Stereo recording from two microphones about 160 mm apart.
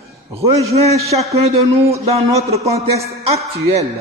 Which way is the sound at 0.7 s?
40° right (ahead or behind).